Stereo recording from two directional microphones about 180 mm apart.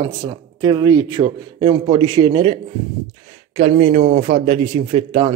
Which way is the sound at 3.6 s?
40° right (ahead or behind).